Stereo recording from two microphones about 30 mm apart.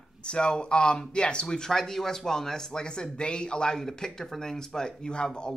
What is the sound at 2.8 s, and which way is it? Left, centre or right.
Speech, left.